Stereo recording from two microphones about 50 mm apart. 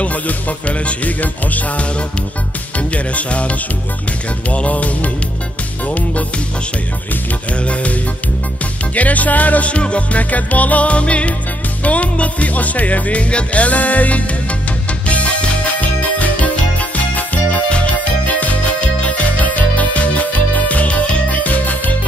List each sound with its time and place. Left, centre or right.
0.0 s music: left
7.6 s music: left